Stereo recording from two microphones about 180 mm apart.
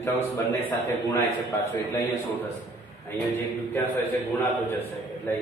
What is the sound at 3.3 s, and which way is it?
Speech, 10° left (ahead or behind).